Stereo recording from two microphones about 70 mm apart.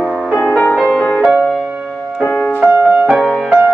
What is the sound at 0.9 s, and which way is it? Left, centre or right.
Music, centre.